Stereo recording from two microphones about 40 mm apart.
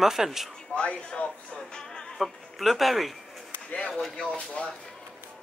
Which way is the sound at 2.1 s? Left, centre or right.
Centre.